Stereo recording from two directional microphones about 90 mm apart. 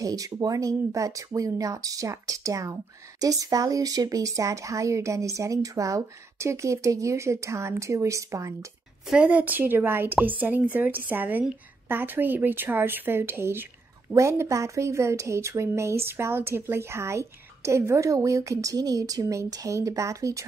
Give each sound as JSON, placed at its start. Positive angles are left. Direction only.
{"t": 0.0, "sound": "speech", "side_deg": -40}
{"t": 9.1, "sound": "a woman's voice", "side_deg": -15}